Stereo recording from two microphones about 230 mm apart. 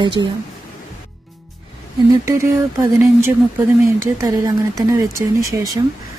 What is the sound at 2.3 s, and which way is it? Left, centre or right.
Speech, centre.